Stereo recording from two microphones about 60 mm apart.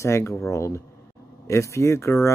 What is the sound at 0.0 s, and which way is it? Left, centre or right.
Speech, left.